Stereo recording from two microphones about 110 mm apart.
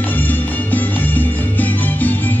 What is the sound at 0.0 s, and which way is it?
Music, 15° left (ahead or behind).